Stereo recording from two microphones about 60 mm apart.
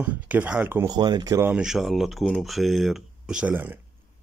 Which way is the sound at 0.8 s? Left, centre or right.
Right.